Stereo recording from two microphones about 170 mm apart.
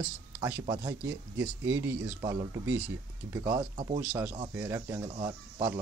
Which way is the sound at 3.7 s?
30° right (ahead or behind).